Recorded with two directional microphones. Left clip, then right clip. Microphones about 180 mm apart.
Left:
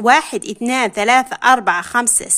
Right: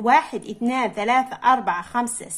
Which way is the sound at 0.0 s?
55° left (ahead or behind).